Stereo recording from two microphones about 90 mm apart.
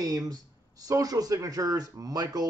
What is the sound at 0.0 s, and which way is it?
Speech, 45° right (ahead or behind).